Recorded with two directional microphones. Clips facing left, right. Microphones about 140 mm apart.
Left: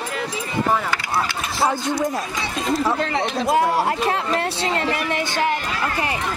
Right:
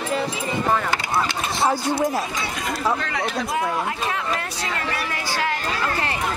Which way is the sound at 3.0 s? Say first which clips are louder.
Left 4 dB; 25° left (ahead or behind).